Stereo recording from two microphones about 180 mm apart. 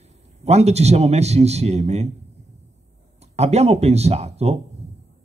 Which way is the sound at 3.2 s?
35° right (ahead or behind).